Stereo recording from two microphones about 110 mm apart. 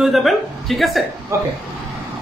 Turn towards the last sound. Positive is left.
turn(degrees=-25)  # may be behind; listen again after turning